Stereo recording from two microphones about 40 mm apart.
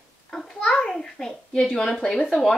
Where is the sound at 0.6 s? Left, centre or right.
Left.